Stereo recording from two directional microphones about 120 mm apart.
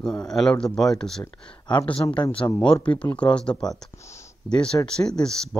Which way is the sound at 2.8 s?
10° left (ahead or behind).